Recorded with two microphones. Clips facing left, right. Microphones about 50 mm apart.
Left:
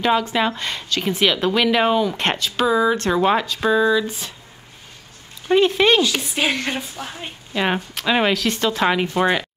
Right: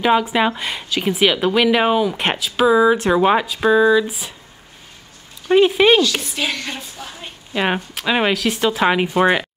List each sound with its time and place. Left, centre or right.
0.0 s speech: centre
5.5 s speech: centre
6.3 s a woman's voice: centre
7.5 s speech: centre